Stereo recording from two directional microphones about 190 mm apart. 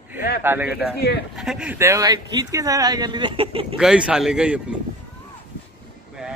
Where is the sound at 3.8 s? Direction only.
5° right (ahead or behind).